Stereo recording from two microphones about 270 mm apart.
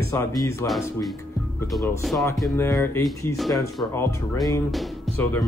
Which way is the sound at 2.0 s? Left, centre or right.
Centre.